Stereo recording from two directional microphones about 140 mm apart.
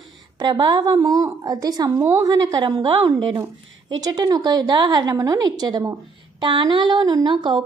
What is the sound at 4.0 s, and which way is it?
A woman's voice, 30° right (ahead or behind).